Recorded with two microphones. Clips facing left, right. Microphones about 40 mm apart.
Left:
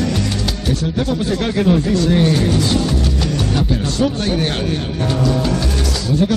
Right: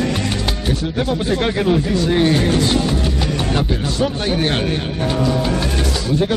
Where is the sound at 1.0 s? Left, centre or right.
Right.